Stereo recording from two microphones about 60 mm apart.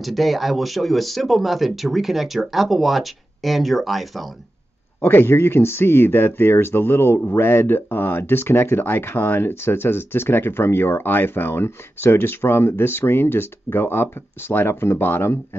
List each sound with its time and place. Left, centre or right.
0.0 s speech: centre
5.0 s speech: left